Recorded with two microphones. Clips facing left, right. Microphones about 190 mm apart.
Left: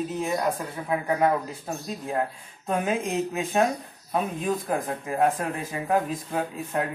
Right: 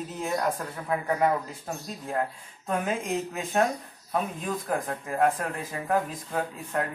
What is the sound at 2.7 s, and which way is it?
Speech, 15° left (ahead or behind).